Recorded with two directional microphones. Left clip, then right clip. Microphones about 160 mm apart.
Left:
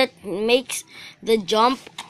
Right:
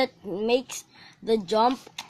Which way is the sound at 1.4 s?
10° left (ahead or behind).